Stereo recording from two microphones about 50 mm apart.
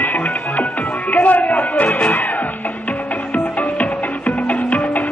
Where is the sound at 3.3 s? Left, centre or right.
Left.